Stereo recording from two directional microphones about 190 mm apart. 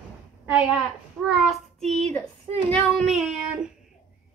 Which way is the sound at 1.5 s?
Centre (ahead or behind).